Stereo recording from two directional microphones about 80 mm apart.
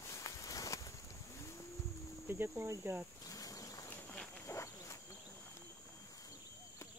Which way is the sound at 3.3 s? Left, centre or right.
Left.